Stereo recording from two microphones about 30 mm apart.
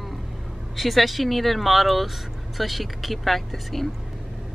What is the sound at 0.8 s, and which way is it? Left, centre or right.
Speech, centre.